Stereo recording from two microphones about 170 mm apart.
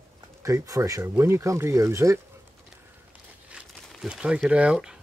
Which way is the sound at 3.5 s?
5° right (ahead or behind).